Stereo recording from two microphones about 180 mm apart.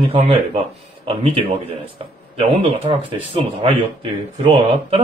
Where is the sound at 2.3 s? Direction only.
35° right (ahead or behind).